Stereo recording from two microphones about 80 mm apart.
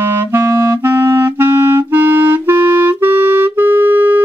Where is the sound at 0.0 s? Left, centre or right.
Right.